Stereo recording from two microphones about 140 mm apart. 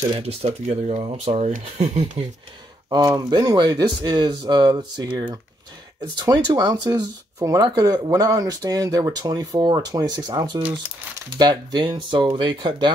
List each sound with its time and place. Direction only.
0.2 s speech: 45° right (ahead or behind)
2.9 s speech: 30° right (ahead or behind)